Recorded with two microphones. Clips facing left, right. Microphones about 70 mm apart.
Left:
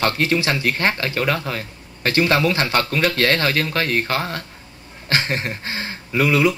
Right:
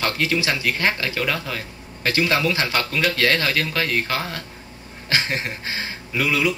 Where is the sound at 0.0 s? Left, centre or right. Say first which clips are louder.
Left 3 dB; left.